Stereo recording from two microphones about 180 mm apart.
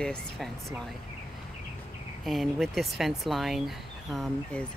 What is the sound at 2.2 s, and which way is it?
Speech, centre (ahead or behind).